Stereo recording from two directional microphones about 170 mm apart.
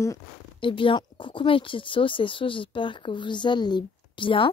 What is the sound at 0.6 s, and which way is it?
Speech, 30° left (ahead or behind).